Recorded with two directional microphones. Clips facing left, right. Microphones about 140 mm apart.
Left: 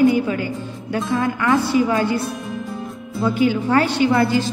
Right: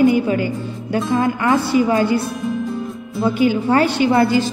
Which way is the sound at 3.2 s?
20° right (ahead or behind).